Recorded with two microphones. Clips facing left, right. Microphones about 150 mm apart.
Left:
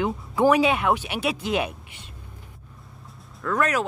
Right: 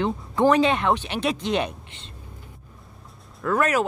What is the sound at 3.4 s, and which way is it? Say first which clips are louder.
Speech: right 2 dB; 5° right (ahead or behind).